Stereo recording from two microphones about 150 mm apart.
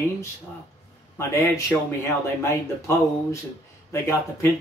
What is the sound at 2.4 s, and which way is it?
Speech, 20° left (ahead or behind).